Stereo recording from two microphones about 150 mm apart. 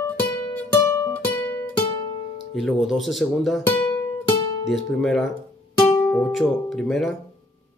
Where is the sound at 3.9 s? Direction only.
15° left (ahead or behind).